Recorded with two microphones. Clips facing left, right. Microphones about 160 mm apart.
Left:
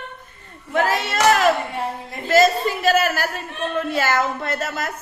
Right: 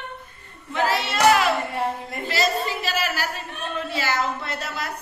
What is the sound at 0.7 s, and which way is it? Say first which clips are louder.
Hands: left 3 dB; 45° left (ahead or behind).